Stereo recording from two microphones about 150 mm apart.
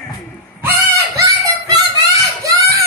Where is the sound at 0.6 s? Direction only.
20° right (ahead or behind).